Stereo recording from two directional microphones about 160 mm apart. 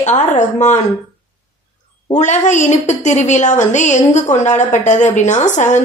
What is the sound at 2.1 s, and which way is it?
A woman's voice, 45° left (ahead or behind).